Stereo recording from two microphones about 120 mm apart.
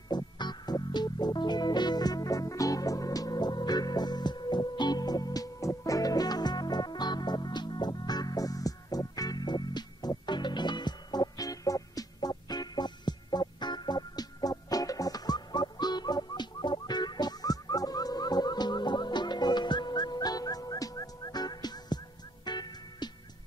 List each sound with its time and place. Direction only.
0.1 s music: 35° left (ahead or behind)